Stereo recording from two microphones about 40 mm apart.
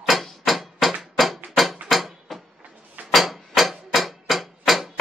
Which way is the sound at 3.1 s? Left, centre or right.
Centre.